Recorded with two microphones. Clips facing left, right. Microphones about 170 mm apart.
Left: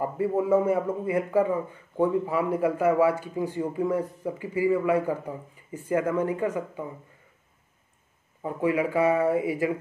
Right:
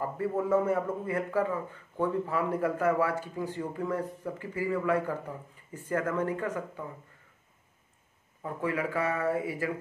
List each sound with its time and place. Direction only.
0.0 s a man's voice: 15° left (ahead or behind)
8.4 s a man's voice: 15° left (ahead or behind)